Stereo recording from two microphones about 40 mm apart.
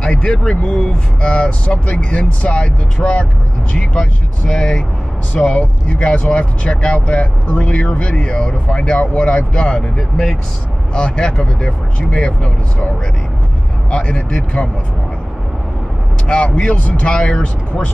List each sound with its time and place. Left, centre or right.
0.0 s speech: left
3.0 s speech: left
3.7 s speech: left
7.8 s speech: left
9.9 s speech: centre
11.0 s speech: left
13.8 s speech: left
16.3 s speech: left